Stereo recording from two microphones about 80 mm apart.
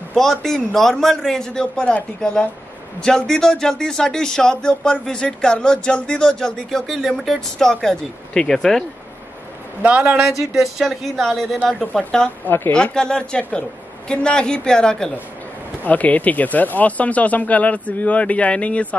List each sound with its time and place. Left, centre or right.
0.1 s speech: centre
9.8 s a man's voice: centre
10.2 s speech: centre
12.4 s speech: left
12.7 s speech: centre
15.8 s speech: centre